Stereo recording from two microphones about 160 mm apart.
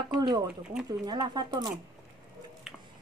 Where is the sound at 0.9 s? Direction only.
25° right (ahead or behind).